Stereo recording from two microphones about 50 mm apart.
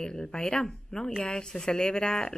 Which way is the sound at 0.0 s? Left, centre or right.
Centre.